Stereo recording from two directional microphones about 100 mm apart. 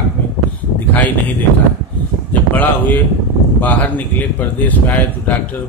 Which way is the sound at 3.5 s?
15° left (ahead or behind).